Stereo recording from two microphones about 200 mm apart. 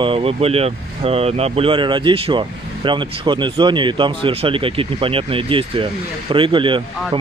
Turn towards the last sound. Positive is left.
turn(degrees=-25)  # may be behind; listen again after turning